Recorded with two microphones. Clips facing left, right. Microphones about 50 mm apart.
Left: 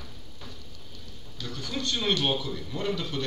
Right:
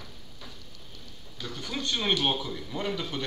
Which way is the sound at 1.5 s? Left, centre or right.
Right.